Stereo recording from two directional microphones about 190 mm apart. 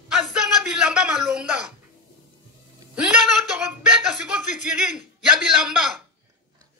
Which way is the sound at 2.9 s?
5° right (ahead or behind).